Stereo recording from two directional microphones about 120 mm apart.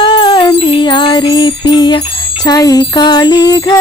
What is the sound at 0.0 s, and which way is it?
Music, 40° left (ahead or behind).